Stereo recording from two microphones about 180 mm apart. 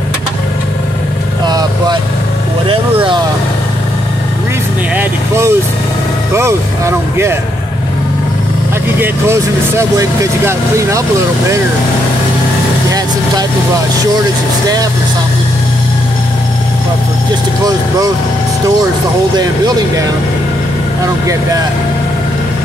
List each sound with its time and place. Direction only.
1.4 s vehicle: 20° right (ahead or behind)
4.9 s vehicle: 15° right (ahead or behind)
6.3 s speech: 15° right (ahead or behind)
9.0 s speech: 15° right (ahead or behind)
19.3 s speech: 25° right (ahead or behind)